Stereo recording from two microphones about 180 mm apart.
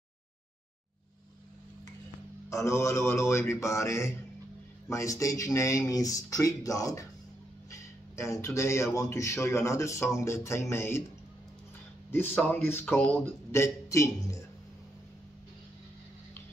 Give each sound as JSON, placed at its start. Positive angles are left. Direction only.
{"t": 2.5, "sound": "a man's voice", "side_deg": 15}
{"t": 12.1, "sound": "a man's voice", "side_deg": 10}